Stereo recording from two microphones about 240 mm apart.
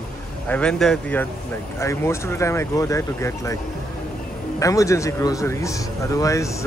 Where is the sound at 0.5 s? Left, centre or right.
Centre.